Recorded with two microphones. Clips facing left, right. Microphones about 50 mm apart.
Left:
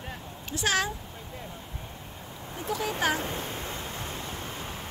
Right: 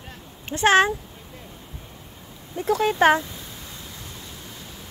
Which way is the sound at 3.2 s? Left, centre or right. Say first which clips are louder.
Left 1 dB; left.